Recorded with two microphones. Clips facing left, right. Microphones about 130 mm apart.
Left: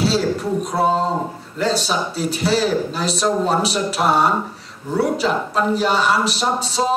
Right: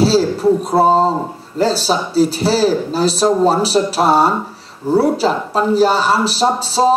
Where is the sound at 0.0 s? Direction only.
35° right (ahead or behind).